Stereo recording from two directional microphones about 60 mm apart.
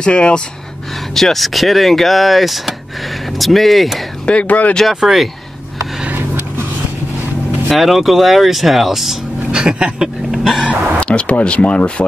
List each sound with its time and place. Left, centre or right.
0.0 s speech: centre
1.1 s speech: centre
4.3 s speech: left
4.8 s speech: centre
7.7 s speech: centre
10.3 s vehicle: centre
11.0 s speech: centre